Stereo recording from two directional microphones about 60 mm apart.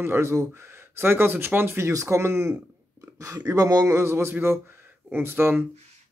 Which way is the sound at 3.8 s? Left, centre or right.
Right.